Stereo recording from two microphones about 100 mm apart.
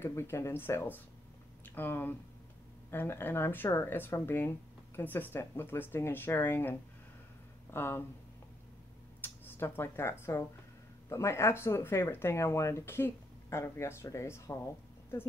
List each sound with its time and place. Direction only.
0.0 s speech: 25° left (ahead or behind)
9.6 s speech: 25° left (ahead or behind)